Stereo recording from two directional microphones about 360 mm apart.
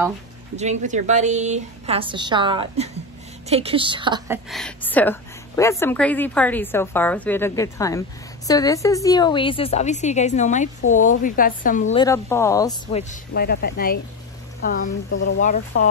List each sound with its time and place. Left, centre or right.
0.6 s a woman's voice: centre
4.5 s a woman's voice: centre; by 11.8 s left
11.9 s a woman's voice: centre
13.1 s a woman's voice: left
15.4 s a woman's voice: left